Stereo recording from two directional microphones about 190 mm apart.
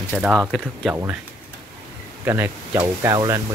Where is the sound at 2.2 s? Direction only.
10° right (ahead or behind).